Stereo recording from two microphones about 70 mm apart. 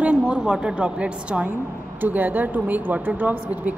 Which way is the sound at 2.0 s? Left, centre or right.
Right.